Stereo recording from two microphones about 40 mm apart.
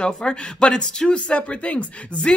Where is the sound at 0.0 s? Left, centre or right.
Left.